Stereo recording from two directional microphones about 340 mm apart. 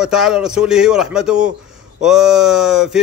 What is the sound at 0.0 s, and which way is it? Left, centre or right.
Speech, centre.